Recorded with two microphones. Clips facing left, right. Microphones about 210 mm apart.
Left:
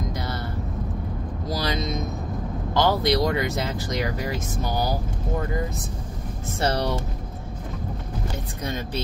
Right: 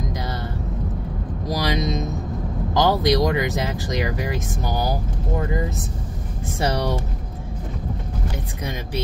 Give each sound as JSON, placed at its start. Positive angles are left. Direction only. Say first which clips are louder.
{"t": 1.5, "sound": "vehicle", "louder": "right 4 dB", "side_deg": -20}
{"t": 2.7, "sound": "speech", "louder": "right 2 dB", "side_deg": -20}